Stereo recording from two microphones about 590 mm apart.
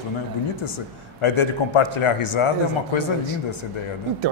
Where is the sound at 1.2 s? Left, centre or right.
Left.